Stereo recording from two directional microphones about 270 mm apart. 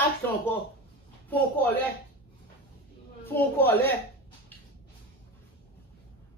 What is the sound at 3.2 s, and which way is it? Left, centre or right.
Speech, centre.